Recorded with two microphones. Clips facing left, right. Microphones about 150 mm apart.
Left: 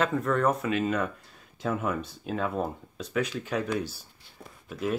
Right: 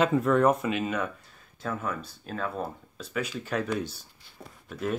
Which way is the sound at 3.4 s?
10° left (ahead or behind).